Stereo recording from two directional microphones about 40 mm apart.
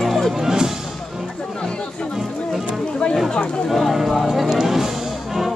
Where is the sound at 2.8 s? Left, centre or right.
Left.